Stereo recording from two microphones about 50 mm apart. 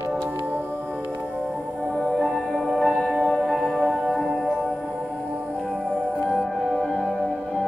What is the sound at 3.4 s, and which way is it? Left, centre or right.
Music, centre.